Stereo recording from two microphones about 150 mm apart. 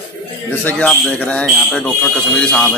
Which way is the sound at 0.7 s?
10° left (ahead or behind).